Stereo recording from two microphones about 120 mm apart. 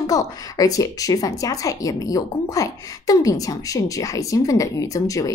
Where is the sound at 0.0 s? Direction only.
30° left (ahead or behind).